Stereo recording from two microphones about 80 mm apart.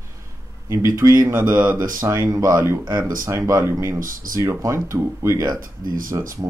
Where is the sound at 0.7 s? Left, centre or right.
Right.